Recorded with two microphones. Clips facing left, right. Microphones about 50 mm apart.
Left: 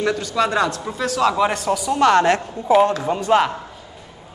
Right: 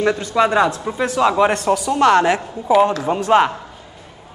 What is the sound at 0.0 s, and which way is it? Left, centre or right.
A man's voice, right.